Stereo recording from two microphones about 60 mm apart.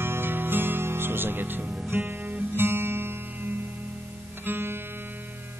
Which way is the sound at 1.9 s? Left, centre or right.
Right.